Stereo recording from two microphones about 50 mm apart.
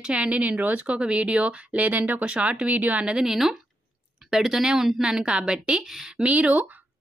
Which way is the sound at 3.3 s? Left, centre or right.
Centre.